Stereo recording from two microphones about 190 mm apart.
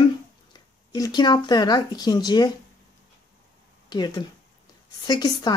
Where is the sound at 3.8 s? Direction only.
20° left (ahead or behind).